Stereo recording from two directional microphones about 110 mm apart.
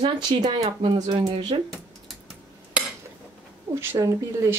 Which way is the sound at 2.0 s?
5° right (ahead or behind).